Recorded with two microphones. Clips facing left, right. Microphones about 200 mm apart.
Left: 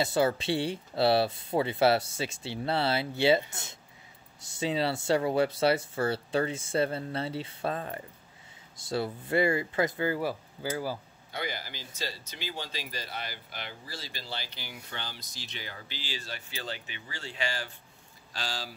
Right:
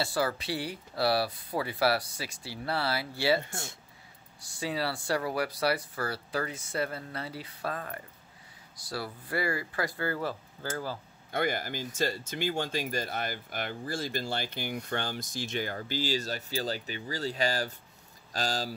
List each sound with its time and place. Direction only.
0.0 s speech: 25° left (ahead or behind)
11.3 s speech: 50° right (ahead or behind)